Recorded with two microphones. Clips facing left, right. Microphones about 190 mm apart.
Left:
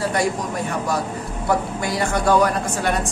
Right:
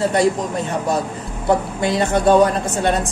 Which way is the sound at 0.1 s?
25° right (ahead or behind).